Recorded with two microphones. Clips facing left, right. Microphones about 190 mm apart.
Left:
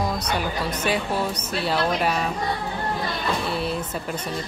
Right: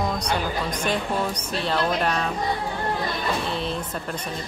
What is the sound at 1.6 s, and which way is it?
Speech, 5° left (ahead or behind).